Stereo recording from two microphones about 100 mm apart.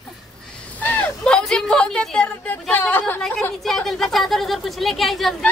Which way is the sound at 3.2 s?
10° left (ahead or behind).